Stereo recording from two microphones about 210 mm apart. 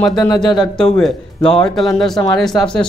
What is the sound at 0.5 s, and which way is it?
Speech, 5° left (ahead or behind).